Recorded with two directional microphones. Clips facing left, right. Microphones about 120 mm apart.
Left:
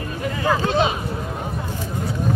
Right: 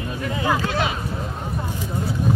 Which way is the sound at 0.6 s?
25° left (ahead or behind).